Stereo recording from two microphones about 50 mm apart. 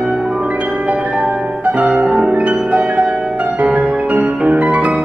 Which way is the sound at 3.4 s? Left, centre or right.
Right.